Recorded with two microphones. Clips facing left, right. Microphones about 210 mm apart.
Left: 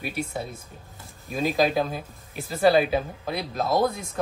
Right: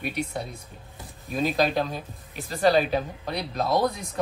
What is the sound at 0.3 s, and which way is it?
Speech, 5° left (ahead or behind).